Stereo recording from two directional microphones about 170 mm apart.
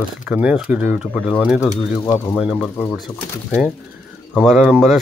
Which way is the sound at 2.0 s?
10° left (ahead or behind).